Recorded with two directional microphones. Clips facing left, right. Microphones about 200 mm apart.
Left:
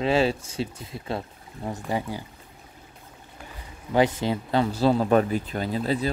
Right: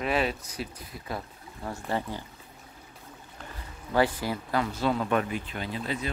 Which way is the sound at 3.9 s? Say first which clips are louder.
Left 4 dB; 20° left (ahead or behind).